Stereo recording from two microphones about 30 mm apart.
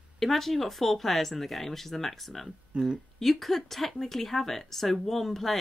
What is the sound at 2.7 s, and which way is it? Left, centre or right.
Speech, right.